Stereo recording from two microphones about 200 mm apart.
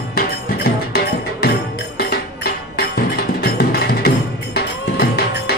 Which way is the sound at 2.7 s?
50° left (ahead or behind).